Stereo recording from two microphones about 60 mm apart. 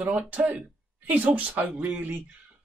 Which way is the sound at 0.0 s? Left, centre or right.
Right.